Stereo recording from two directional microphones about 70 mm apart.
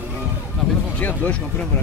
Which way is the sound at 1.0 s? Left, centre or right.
Left.